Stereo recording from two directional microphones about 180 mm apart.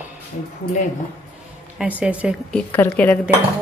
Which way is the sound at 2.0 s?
5° right (ahead or behind).